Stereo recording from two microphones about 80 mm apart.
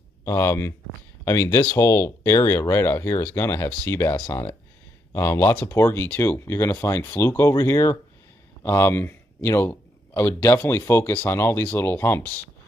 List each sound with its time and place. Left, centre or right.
0.2 s speech: left
5.5 s a man's voice: left